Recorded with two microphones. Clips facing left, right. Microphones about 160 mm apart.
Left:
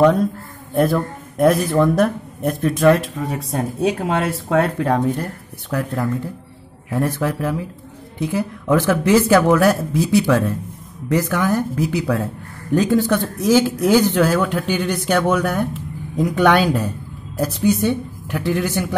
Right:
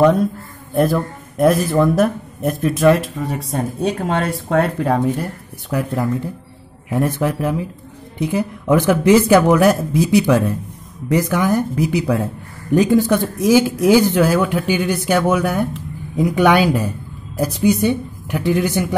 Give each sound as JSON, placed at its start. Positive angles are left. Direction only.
{"t": 0.0, "sound": "a man's voice", "side_deg": 0}